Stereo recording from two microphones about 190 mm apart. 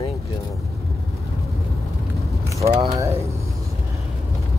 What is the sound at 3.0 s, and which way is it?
Speech, 15° right (ahead or behind).